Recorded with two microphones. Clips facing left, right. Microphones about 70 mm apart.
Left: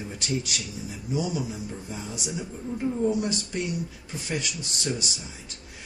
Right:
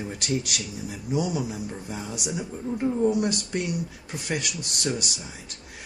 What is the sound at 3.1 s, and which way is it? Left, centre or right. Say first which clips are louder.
Speech: right 2 dB; right.